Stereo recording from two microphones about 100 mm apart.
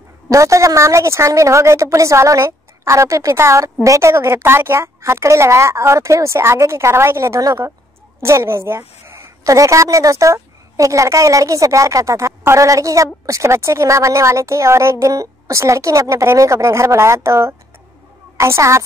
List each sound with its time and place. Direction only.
0.3 s a woman's voice: 30° right (ahead or behind)